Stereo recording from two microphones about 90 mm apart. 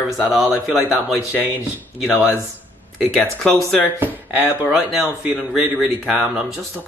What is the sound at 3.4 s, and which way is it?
Speech, centre (ahead or behind).